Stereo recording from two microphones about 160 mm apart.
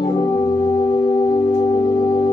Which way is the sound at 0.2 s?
20° left (ahead or behind).